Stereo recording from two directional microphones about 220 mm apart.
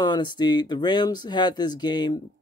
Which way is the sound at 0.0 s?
20° left (ahead or behind).